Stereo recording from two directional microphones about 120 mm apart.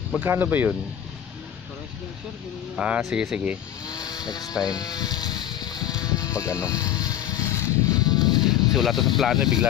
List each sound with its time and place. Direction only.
0.2 s speech: 15° right (ahead or behind)
2.7 s speech: 5° right (ahead or behind)
3.8 s a sound: 35° left (ahead or behind)
4.6 s speech: 30° left (ahead or behind)
6.0 s vehicle: 30° left (ahead or behind)
8.4 s speech: 5° right (ahead or behind)